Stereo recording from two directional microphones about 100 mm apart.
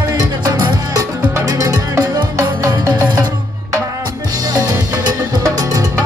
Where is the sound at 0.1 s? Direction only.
40° right (ahead or behind).